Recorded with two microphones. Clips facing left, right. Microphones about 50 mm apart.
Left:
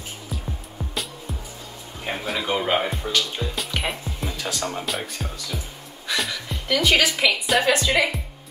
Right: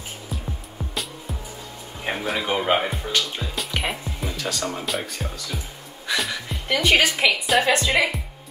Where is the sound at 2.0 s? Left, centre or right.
Centre.